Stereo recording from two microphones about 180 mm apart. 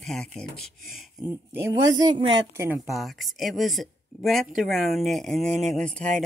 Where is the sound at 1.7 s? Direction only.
25° right (ahead or behind).